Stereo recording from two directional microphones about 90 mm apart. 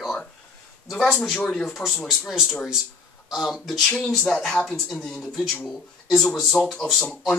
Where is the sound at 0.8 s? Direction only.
Centre (ahead or behind).